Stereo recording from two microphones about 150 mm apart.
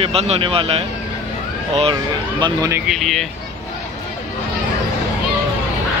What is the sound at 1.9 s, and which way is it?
Speech, 30° right (ahead or behind).